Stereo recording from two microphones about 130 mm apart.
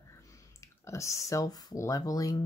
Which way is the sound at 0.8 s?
20° left (ahead or behind).